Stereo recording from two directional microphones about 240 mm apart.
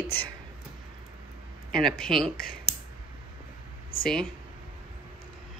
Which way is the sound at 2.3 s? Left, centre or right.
Left.